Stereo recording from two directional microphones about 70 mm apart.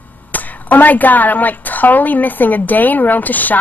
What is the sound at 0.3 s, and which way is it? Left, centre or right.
A woman's voice, left.